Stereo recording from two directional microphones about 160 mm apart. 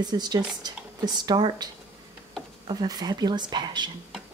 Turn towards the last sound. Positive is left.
turn(degrees=-25)  # may be behind; listen again after turning